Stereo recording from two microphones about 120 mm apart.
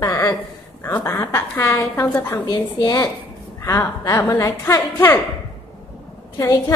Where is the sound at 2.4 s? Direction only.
35° left (ahead or behind); by 5.2 s 20° left (ahead or behind).